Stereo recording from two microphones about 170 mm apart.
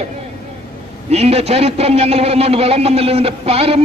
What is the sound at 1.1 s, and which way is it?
A man's voice, 40° right (ahead or behind).